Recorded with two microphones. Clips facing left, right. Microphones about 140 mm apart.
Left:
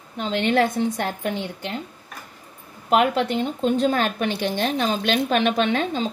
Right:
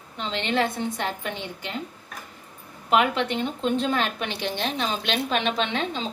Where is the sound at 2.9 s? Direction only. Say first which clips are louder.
Left 3 dB; 40° left (ahead or behind).